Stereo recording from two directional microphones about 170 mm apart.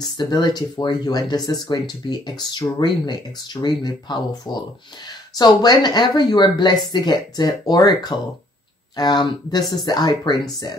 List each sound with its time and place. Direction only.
0.0 s speech: 25° left (ahead or behind)